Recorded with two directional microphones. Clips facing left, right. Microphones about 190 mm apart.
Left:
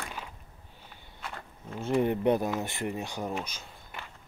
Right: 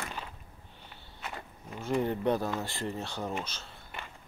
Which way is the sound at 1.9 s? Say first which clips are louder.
Left 3 dB; 20° left (ahead or behind).